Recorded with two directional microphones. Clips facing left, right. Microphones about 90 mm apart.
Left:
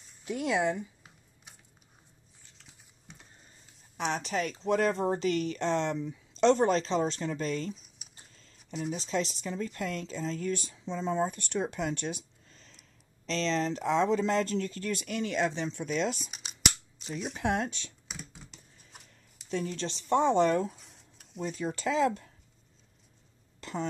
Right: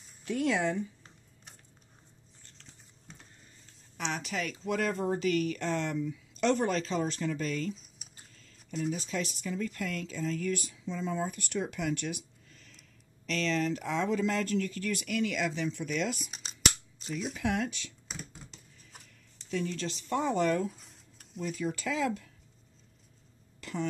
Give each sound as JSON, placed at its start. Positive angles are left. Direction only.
{"t": 0.2, "sound": "speech", "side_deg": 20}
{"t": 2.4, "sound": "typing", "side_deg": 5}
{"t": 4.1, "sound": "speech", "side_deg": 35}
{"t": 7.7, "sound": "typing", "side_deg": 0}
{"t": 8.7, "sound": "speech", "side_deg": 0}
{"t": 9.0, "sound": "a woman's voice", "side_deg": 30}
{"t": 16.3, "sound": "scissors", "side_deg": 5}
{"t": 17.3, "sound": "speech", "side_deg": 30}
{"t": 18.0, "sound": "a sound", "side_deg": 0}
{"t": 19.5, "sound": "a woman's voice", "side_deg": 30}
{"t": 20.6, "sound": "a sound", "side_deg": 0}
{"t": 21.4, "sound": "speech", "side_deg": 35}
{"t": 23.6, "sound": "throat clearing", "side_deg": 30}